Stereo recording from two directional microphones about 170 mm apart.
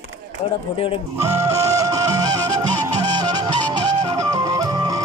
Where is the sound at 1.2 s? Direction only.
15° right (ahead or behind).